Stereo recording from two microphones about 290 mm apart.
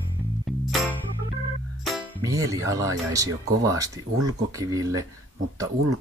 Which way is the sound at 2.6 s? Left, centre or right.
Centre.